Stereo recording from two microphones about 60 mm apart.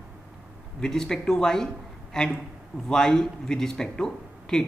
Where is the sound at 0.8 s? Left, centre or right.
Centre.